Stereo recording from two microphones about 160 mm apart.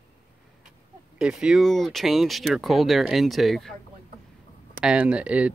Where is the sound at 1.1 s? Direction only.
5° right (ahead or behind).